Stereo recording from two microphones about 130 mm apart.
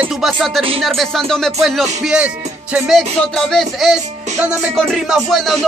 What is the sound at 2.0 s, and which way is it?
Music, 10° right (ahead or behind).